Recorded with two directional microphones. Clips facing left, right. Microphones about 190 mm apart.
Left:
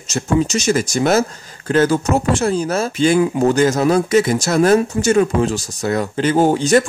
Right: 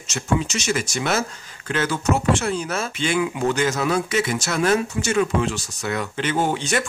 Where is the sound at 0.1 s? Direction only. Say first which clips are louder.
Left 6 dB; 40° left (ahead or behind).